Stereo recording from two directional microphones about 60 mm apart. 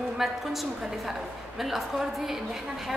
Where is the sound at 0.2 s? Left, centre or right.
Centre.